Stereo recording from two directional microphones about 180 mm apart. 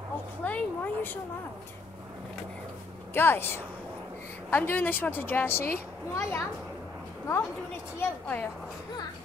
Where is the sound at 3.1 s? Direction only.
10° left (ahead or behind).